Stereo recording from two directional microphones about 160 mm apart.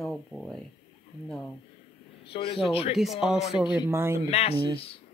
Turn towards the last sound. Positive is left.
turn(degrees=35)  # may be behind; listen again after turning